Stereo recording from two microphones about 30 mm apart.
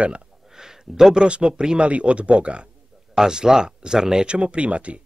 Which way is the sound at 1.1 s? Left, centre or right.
Right.